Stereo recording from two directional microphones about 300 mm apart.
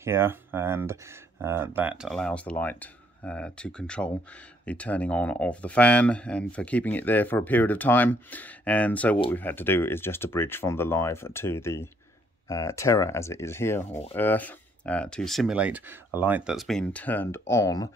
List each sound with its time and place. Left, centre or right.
0.0 s speech: centre
13.8 s speech: left
14.1 s speech: centre